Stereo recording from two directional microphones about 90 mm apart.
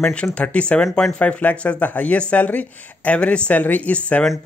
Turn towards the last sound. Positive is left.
turn(degrees=15)  # may be behind; listen again after turning